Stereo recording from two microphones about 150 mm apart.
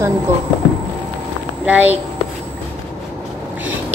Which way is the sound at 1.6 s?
10° right (ahead or behind).